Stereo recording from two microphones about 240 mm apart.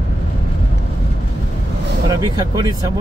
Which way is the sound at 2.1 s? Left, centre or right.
Centre.